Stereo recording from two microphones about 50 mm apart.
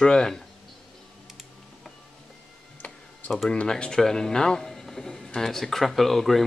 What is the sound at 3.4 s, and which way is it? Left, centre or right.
Speech, centre.